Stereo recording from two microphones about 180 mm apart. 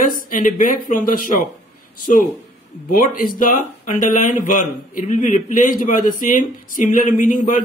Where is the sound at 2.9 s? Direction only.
50° left (ahead or behind).